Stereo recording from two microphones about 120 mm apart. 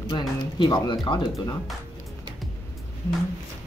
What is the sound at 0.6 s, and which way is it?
Speech, 40° left (ahead or behind).